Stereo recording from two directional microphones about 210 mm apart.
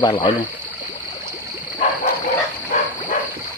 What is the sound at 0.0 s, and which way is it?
Speech, 20° left (ahead or behind).